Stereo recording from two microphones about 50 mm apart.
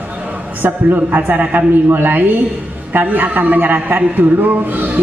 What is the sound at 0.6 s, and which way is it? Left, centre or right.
A man's voice, right.